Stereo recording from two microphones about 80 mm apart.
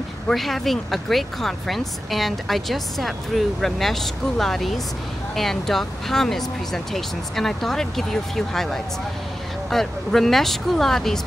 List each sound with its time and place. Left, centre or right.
0.3 s speech: centre